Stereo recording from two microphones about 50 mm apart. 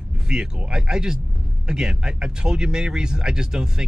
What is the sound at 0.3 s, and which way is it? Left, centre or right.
A man's voice, centre.